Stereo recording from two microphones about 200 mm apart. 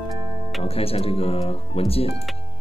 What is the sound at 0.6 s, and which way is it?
Speech, 30° left (ahead or behind).